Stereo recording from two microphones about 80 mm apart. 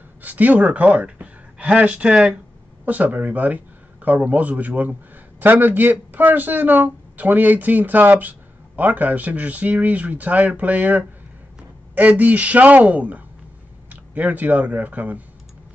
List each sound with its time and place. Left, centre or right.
0.2 s speech: right
2.8 s speech: right